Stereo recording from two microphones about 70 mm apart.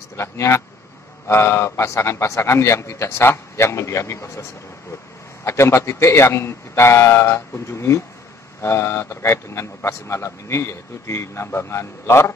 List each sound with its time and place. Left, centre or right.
0.1 s a man's voice: left